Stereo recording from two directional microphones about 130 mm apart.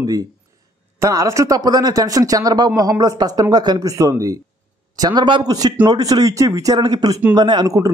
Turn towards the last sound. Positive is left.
turn(degrees=-25)  # may be behind; listen again after turning